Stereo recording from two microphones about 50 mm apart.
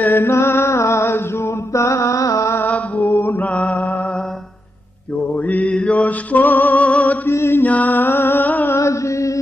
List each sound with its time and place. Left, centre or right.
0.0 s music: left
0.3 s music: left
1.4 s mantra: left
3.3 s mantra: left
5.3 s music: left
7.2 s mantra: left
7.6 s music: left
8.7 s chant: left